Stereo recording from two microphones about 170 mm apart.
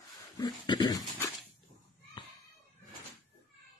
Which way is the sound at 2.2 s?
30° left (ahead or behind).